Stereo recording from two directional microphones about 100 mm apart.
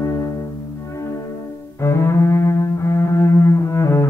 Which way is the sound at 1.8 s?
25° left (ahead or behind).